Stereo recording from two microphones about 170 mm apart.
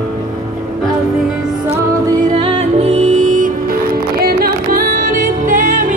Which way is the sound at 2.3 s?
35° right (ahead or behind).